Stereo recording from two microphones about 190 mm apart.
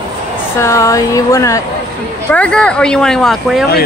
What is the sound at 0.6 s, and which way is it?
Speech, 15° left (ahead or behind).